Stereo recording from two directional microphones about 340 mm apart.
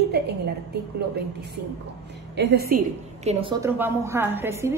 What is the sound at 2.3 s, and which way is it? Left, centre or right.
Speech, right.